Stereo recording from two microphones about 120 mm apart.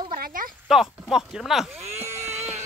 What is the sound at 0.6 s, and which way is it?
Speech, 5° right (ahead or behind).